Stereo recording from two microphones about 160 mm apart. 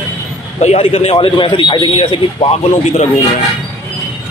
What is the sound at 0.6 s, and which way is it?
Speech, 40° left (ahead or behind).